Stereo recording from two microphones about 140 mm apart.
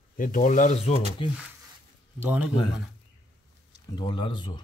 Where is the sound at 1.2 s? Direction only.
40° left (ahead or behind).